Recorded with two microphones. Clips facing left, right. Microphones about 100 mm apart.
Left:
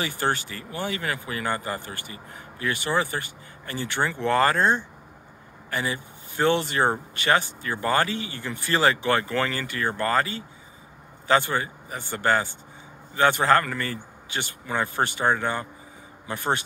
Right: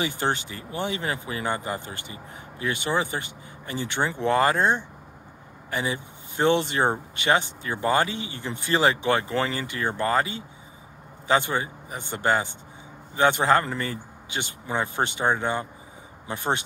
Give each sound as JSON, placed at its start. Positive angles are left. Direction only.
{"t": 0.0, "sound": "speech", "side_deg": -20}